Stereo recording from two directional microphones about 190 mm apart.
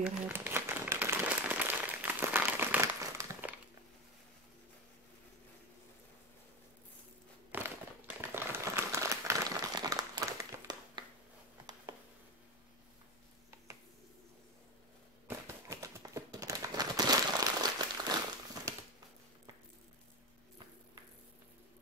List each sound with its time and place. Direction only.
0.0 s crumpling: 10° right (ahead or behind)
7.5 s crumpling: 10° right (ahead or behind)
15.2 s a sound: 15° right (ahead or behind)